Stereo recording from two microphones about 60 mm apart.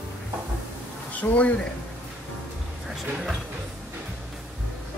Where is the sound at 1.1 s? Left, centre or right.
Left.